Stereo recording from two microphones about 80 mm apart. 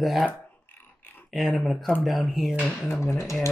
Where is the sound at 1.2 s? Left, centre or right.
Centre.